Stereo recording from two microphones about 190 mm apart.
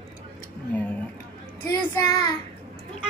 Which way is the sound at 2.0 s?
20° left (ahead or behind).